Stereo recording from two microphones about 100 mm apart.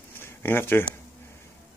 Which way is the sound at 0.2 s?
20° left (ahead or behind).